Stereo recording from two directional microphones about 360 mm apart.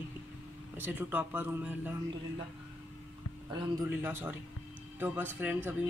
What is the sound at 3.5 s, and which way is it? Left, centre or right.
Speech, centre.